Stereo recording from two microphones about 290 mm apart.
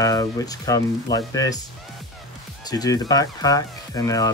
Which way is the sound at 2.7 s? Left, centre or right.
Centre.